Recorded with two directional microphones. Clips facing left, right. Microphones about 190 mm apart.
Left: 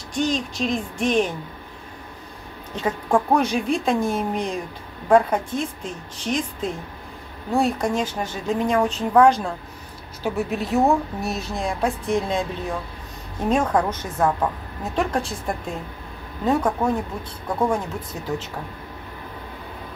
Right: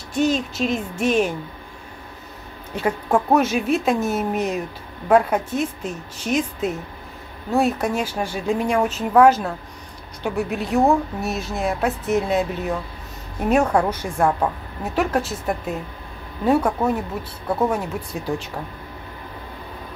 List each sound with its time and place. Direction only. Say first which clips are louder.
0.1 s a woman's voice: right 3 dB; 5° right (ahead or behind)
2.7 s a woman's voice: right 1 dB; 10° right (ahead or behind)